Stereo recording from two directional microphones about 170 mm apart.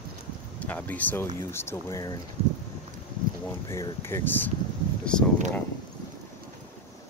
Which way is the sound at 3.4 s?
20° left (ahead or behind).